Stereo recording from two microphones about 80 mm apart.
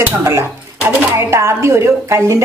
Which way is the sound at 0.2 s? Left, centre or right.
Right.